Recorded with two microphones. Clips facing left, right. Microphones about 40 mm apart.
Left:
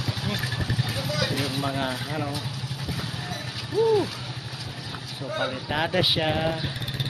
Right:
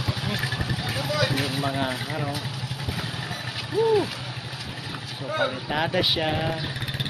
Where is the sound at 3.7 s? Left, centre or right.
Centre.